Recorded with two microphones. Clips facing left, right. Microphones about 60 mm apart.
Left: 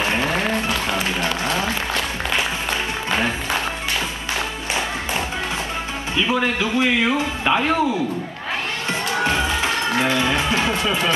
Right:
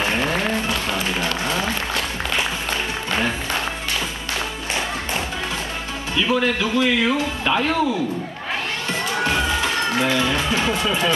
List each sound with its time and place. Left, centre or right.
0.0 s a sound: centre
6.2 s a man's voice: centre
10.1 s a man's voice: left